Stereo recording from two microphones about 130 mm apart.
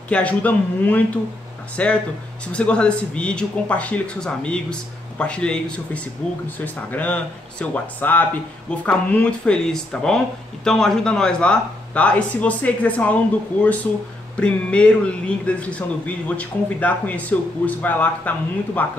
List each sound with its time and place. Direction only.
0.1 s speech: 10° left (ahead or behind)